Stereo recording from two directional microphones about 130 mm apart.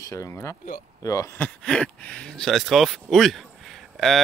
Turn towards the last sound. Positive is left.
turn(degrees=0)  # may be behind; listen again after turning